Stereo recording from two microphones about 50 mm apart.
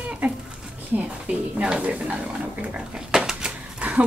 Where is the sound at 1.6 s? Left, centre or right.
Right.